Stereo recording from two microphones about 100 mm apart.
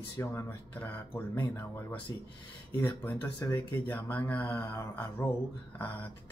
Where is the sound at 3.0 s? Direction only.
15° left (ahead or behind).